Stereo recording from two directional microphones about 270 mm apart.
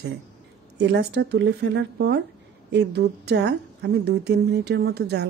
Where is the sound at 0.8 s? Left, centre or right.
Right.